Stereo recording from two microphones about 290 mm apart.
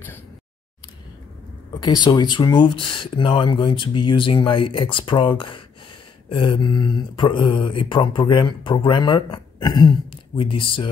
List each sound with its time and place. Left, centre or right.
2.0 s speech: centre